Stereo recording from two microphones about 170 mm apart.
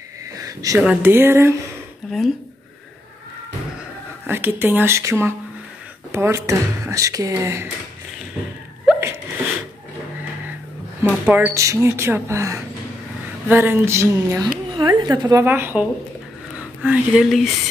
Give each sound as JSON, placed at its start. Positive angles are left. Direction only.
{"t": 0.4, "sound": "a sound", "side_deg": -20}
{"t": 0.7, "sound": "speech", "side_deg": -10}
{"t": 2.0, "sound": "speech", "side_deg": 0}
{"t": 4.3, "sound": "speech", "side_deg": -10}
{"t": 8.8, "sound": "sneeze", "side_deg": -15}
{"t": 11.2, "sound": "a woman's voice", "side_deg": -10}
{"t": 15.4, "sound": "speech", "side_deg": -10}